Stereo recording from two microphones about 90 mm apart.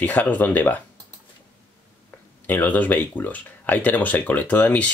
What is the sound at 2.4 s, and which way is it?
Speech, 20° left (ahead or behind).